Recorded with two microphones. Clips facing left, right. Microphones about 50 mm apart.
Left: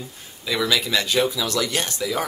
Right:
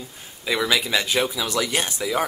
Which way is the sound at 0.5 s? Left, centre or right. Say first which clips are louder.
Even; centre.